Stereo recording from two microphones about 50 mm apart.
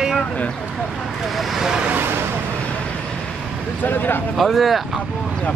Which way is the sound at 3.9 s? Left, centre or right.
Left.